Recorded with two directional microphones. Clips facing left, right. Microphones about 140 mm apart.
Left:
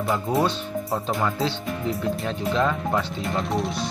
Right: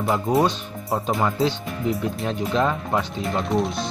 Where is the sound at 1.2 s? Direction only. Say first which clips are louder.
Right 3 dB; 20° right (ahead or behind).